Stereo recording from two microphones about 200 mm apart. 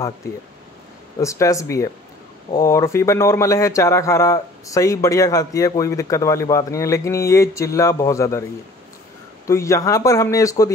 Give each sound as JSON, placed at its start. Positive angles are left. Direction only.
{"t": 1.2, "sound": "speech", "side_deg": 15}
{"t": 9.5, "sound": "speech", "side_deg": 15}